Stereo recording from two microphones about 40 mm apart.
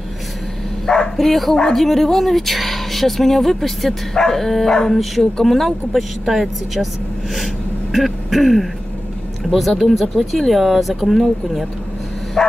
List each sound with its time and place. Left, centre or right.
0.8 s bow-wow: centre
1.1 s speech: centre
4.2 s dog: centre
5.2 s speech: centre
7.9 s throat clearing: centre
9.4 s speech: centre
12.4 s bow-wow: centre